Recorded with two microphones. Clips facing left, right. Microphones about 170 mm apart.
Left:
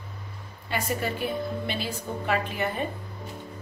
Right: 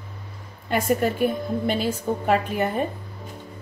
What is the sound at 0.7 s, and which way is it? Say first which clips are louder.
A woman's voice: right 7 dB; 50° right (ahead or behind).